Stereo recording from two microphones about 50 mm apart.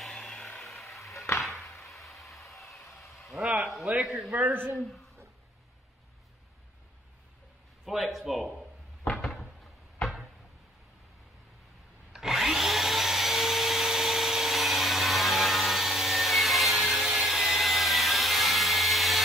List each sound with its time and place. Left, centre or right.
0.0 s vehicle: centre
0.6 s music: centre
1.1 s music: left
1.4 s arrow: centre
3.9 s a man's voice: right
4.4 s speech: right
7.8 s speech: centre
9.1 s cupboard open or close: centre
12.1 s vacuum cleaner: centre